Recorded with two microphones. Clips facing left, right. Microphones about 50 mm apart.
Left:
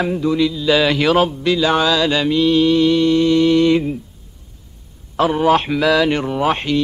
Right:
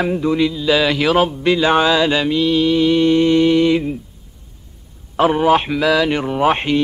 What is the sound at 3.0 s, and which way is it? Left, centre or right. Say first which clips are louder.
Mantra: right 1 dB; right.